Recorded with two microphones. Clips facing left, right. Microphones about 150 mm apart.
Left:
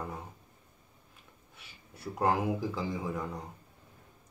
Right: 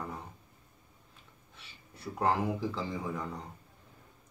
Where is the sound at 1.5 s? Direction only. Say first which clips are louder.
Even; 10° left (ahead or behind).